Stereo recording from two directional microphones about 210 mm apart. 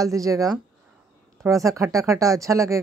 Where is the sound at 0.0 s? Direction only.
15° right (ahead or behind).